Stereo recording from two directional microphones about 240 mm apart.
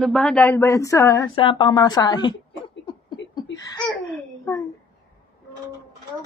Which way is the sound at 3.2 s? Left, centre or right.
Left.